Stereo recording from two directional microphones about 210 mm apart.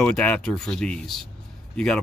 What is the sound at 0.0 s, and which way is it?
Speech, 5° left (ahead or behind).